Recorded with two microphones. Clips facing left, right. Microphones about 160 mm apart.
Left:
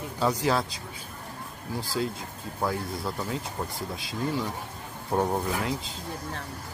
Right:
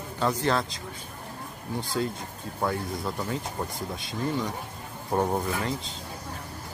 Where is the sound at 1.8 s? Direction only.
Centre (ahead or behind).